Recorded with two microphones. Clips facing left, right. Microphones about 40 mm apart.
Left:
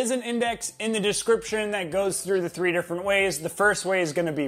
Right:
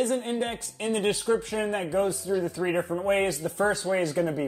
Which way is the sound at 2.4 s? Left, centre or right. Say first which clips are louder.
Left 2 dB; left.